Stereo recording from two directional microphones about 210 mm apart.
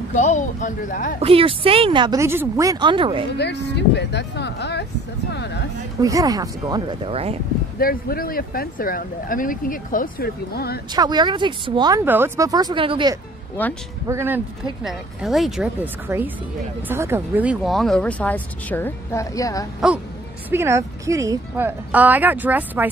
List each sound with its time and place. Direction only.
0.1 s speech: 35° left (ahead or behind)
1.2 s speech: 25° right (ahead or behind)
3.3 s speech: 55° left (ahead or behind)
5.3 s a sound: 55° left (ahead or behind)
5.9 s speech: 15° right (ahead or behind)
7.8 s speech: 45° left (ahead or behind)
11.0 s speech: 20° right (ahead or behind)
13.6 s speech: 10° left (ahead or behind)
14.0 s speech: 10° right (ahead or behind); by 19.6 s 15° left (ahead or behind)
19.8 s speech: centre (ahead or behind)
20.5 s speech: 10° right (ahead or behind)